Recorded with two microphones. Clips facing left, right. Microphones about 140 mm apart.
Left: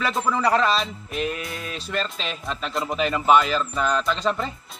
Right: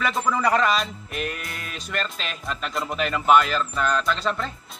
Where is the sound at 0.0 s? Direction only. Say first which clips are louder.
Even; centre (ahead or behind).